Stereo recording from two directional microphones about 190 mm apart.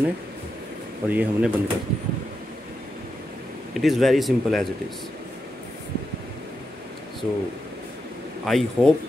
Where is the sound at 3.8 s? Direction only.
Centre (ahead or behind).